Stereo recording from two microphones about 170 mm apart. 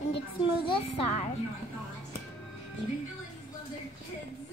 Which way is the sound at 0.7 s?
35° left (ahead or behind).